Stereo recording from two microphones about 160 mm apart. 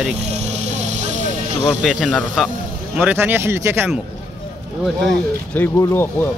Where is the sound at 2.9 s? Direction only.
10° right (ahead or behind).